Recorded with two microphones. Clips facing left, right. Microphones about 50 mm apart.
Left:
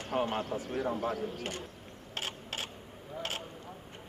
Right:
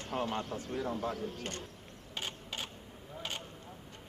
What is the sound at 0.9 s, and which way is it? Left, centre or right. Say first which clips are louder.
Speech: left 4 dB; left.